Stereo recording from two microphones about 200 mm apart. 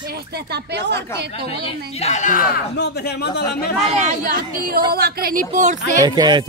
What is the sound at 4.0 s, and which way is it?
A woman's voice, 40° right (ahead or behind).